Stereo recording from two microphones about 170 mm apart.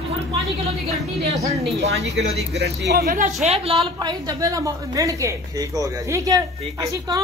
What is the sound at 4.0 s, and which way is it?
Speech, 20° right (ahead or behind).